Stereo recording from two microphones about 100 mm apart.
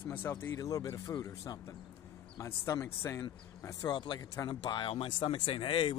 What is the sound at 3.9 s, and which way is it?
Speech, 45° left (ahead or behind).